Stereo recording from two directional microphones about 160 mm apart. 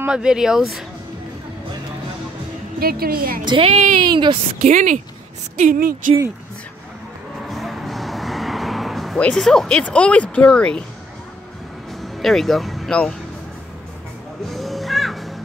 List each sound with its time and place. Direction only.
0.0 s speech: 5° right (ahead or behind)
2.8 s speech: 70° right (ahead or behind)
3.4 s a woman's voice: 35° right (ahead or behind)
4.0 s speech: 30° right (ahead or behind)
4.6 s speech: 50° right (ahead or behind)
7.4 s vehicle: centre (ahead or behind)
12.0 s speech: centre (ahead or behind)
14.5 s music: centre (ahead or behind)